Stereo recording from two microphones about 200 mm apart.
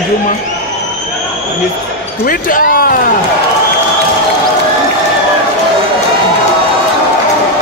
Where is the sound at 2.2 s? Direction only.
45° left (ahead or behind).